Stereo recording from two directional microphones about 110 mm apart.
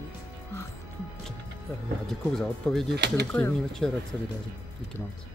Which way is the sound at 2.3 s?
5° left (ahead or behind).